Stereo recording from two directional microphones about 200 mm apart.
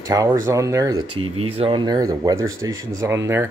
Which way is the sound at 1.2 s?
90° right.